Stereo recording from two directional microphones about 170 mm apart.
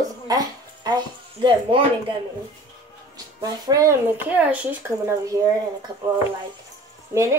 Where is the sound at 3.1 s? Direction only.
20° right (ahead or behind).